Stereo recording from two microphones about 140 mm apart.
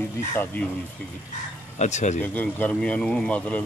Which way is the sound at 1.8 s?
55° left (ahead or behind).